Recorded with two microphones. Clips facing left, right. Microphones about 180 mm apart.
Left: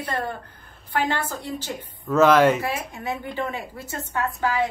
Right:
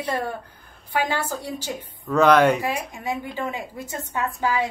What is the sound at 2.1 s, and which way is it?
Speech, centre (ahead or behind).